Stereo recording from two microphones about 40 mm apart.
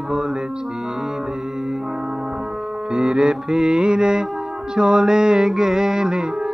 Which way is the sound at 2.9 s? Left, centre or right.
Centre.